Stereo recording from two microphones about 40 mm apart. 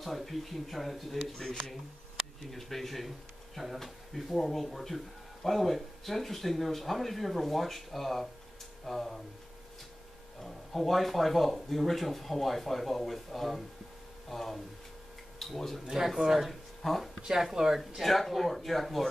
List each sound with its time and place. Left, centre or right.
0.0 s speech: centre
1.3 s speech: centre
2.4 s speech: centre
10.4 s speech: centre
17.4 s speech: centre
18.0 s speech: centre